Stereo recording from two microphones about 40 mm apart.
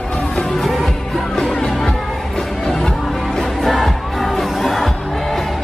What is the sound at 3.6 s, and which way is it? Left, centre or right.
Music, centre.